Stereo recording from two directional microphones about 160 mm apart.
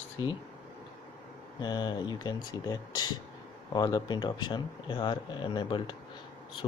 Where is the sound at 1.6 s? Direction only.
25° left (ahead or behind).